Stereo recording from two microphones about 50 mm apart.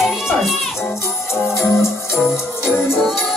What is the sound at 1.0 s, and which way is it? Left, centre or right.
Music, left.